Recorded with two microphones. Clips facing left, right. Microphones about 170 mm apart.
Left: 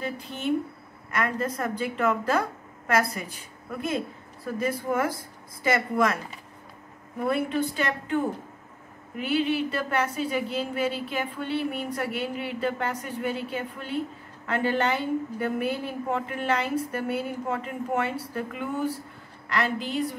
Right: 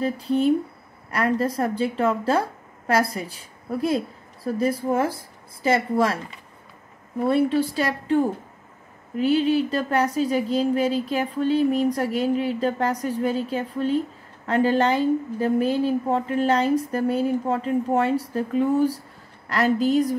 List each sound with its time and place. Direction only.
0.0 s speech: 35° right (ahead or behind)
7.2 s speech: 30° right (ahead or behind)